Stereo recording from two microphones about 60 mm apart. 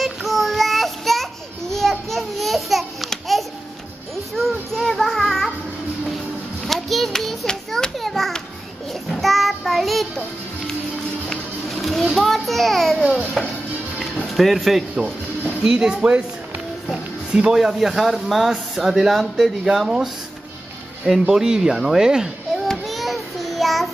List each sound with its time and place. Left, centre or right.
0.0 s child singing: centre
6.7 s children playing: centre
9.1 s child singing: centre
11.2 s music: centre
14.2 s speech: centre
16.9 s a sound: centre
17.6 s speech: centre
22.7 s child singing: centre